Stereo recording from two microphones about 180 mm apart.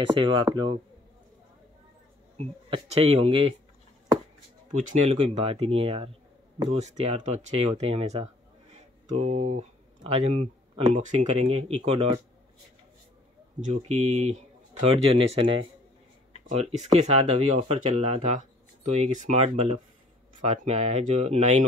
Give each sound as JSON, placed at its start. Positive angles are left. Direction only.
{"t": 0.0, "sound": "speech", "side_deg": -25}
{"t": 2.3, "sound": "speech", "side_deg": -35}
{"t": 4.7, "sound": "speech", "side_deg": -40}
{"t": 8.7, "sound": "a sound", "side_deg": -35}
{"t": 11.0, "sound": "speech", "side_deg": -40}
{"t": 13.6, "sound": "speech", "side_deg": -40}